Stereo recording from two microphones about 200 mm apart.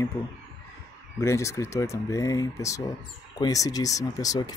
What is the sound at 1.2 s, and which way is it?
Speech, 15° left (ahead or behind).